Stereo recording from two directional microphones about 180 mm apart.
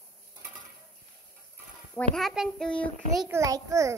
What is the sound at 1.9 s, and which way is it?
A child's voice, centre (ahead or behind).